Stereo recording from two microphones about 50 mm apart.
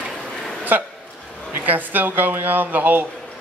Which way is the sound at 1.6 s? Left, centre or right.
Right.